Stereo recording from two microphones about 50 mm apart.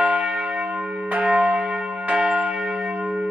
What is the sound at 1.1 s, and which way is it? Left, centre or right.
Church bell, right.